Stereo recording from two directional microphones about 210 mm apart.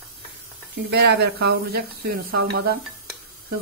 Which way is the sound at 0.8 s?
50° right (ahead or behind).